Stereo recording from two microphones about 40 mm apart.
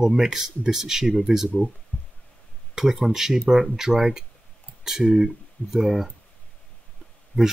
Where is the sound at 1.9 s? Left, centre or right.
Left.